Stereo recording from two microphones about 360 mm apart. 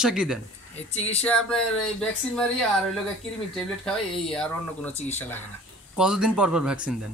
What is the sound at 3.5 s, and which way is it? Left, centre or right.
Speech, centre.